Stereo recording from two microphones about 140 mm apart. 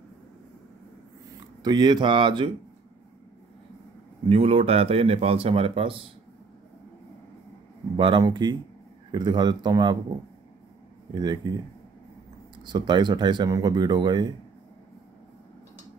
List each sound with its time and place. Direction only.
1.6 s speech: 30° right (ahead or behind)
4.3 s speech: 45° right (ahead or behind)
8.0 s speech: 35° right (ahead or behind)
11.1 s speech: 30° right (ahead or behind)
12.6 s speech: 30° right (ahead or behind)